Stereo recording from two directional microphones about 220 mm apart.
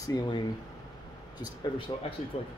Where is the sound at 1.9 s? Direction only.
20° left (ahead or behind).